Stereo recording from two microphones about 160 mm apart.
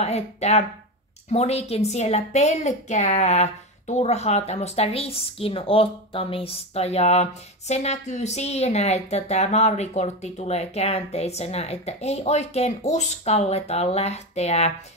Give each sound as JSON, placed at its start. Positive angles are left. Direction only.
{"t": 0.0, "sound": "a woman's voice", "side_deg": 45}